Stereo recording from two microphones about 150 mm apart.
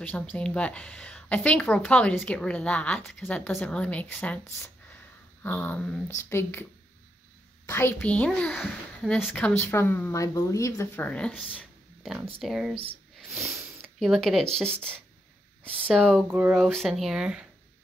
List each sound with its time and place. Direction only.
0.0 s speech: 10° left (ahead or behind)
5.4 s speech: 15° left (ahead or behind)
7.6 s speech: 15° left (ahead or behind)
11.1 s speech: 5° left (ahead or behind)
13.6 s a sound: 10° right (ahead or behind)
13.8 s speech: centre (ahead or behind)
16.3 s speech: 10° right (ahead or behind)
16.7 s speech: centre (ahead or behind)